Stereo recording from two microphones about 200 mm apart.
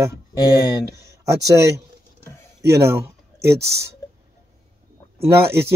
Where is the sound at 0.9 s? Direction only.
15° right (ahead or behind).